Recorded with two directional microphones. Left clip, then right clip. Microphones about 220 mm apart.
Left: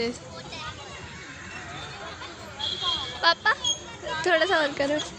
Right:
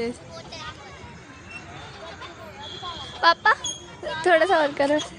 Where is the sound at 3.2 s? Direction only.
20° right (ahead or behind).